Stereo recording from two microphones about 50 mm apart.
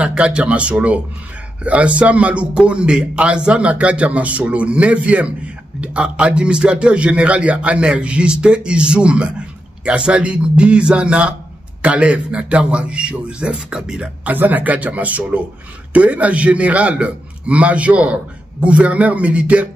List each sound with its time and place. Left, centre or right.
0.0 s a man's voice: right
14.2 s a man's voice: right